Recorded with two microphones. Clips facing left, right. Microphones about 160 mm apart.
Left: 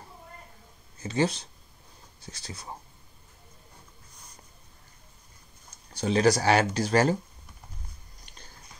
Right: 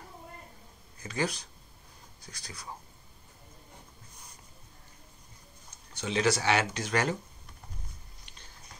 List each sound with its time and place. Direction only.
0.9 s speech: 25° left (ahead or behind)
5.9 s speech: 40° left (ahead or behind)